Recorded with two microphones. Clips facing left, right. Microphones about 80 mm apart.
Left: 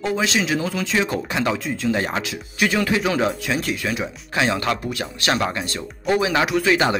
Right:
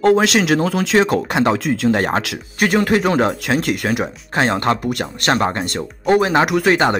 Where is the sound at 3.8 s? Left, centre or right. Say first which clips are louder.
Right 5 dB; right.